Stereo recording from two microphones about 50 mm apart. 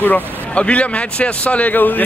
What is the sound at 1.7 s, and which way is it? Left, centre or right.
Speech, left.